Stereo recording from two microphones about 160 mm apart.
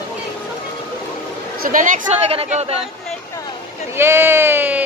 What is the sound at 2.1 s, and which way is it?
Speech, 40° right (ahead or behind).